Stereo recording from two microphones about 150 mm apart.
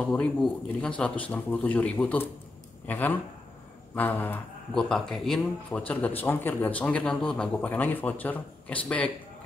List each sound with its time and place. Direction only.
0.0 s speech: 10° left (ahead or behind)